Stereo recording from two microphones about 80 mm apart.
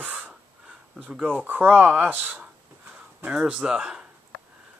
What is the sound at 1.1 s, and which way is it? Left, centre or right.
Speech, centre.